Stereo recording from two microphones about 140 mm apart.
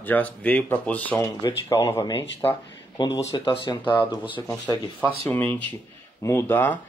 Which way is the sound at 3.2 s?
30° left (ahead or behind).